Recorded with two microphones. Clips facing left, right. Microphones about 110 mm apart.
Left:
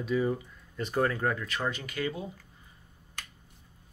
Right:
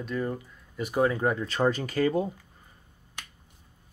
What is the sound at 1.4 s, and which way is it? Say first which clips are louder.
Speech: right 8 dB; 35° right (ahead or behind).